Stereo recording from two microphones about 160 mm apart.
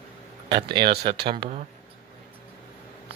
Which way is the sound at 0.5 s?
30° right (ahead or behind).